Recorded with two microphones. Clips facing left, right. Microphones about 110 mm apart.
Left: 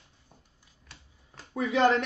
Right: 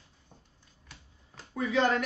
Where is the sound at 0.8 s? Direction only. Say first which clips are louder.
Even; centre (ahead or behind).